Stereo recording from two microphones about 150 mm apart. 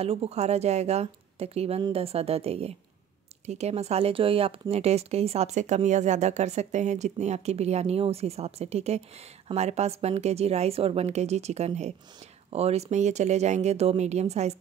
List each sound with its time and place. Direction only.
0.0 s a woman's voice: 40° right (ahead or behind)